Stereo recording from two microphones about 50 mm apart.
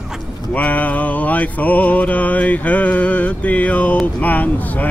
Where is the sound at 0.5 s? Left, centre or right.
Left.